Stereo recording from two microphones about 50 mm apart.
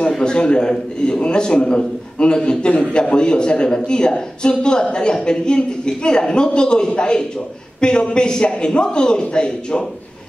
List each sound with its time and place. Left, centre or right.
0.2 s a man's voice: centre